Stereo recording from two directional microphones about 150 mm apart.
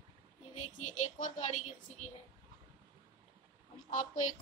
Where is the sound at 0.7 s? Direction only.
55° left (ahead or behind).